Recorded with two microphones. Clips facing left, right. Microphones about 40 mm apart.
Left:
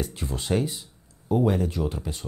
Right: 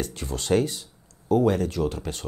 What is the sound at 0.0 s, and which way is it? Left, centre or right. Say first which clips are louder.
Speech: even; centre.